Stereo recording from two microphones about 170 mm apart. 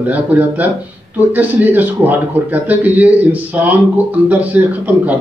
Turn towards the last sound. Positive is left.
turn(degrees=-10)  # may be behind; listen again after turning